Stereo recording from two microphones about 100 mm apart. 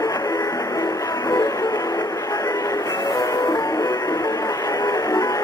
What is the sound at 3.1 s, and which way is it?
Music, 35° left (ahead or behind).